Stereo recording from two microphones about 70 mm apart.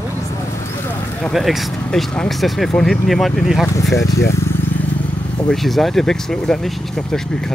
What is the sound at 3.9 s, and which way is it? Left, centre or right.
Speech, left.